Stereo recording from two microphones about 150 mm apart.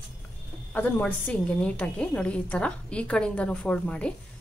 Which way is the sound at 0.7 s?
10° left (ahead or behind).